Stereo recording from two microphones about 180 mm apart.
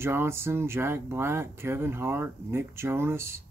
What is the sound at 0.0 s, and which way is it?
Speech, 15° right (ahead or behind).